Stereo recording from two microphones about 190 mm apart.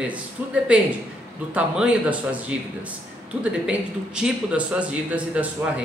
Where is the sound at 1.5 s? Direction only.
5° right (ahead or behind).